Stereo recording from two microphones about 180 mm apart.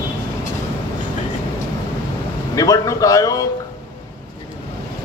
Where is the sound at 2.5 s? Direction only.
20° left (ahead or behind).